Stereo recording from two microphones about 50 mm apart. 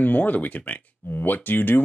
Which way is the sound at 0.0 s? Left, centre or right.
Left.